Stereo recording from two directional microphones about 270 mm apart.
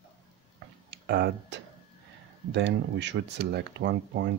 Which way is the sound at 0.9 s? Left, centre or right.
Right.